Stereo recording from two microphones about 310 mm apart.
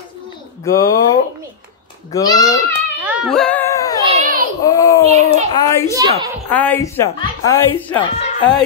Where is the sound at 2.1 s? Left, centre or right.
Centre.